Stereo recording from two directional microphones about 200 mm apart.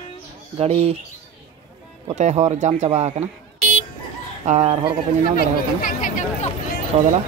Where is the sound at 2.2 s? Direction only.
35° right (ahead or behind).